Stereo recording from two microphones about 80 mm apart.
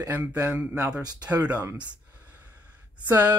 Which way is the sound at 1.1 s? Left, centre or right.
Right.